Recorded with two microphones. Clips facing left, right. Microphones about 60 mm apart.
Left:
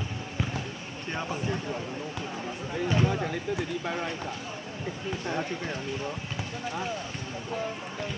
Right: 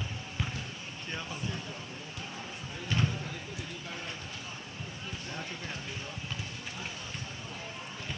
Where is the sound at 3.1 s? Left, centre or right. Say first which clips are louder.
Left 10 dB; left.